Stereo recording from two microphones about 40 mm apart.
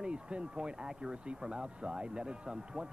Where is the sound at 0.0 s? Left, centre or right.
Right.